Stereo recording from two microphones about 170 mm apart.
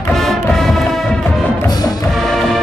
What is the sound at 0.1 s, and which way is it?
Music, centre (ahead or behind).